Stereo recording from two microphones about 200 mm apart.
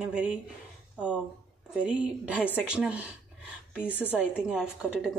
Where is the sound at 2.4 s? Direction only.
10° left (ahead or behind).